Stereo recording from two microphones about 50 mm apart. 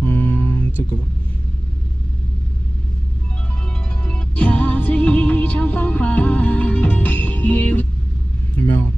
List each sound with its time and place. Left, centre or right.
0.0 s a sound: left
4.0 s music: left
8.5 s vehicle: left